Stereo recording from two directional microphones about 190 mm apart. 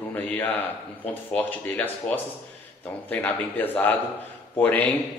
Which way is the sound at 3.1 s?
10° left (ahead or behind).